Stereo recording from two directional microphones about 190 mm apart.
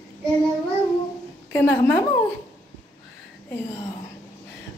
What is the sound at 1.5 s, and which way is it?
Speech, 10° left (ahead or behind).